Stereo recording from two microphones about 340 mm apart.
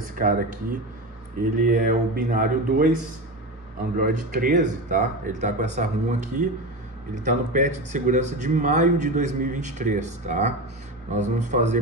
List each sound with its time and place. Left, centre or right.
0.2 s speech: right
1.6 s speech: right
3.9 s speech: right